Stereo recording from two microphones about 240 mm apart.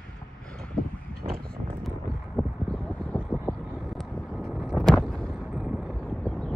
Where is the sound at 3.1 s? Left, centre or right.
Centre.